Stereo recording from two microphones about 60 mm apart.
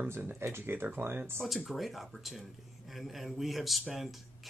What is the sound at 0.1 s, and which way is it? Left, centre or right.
Speech, right.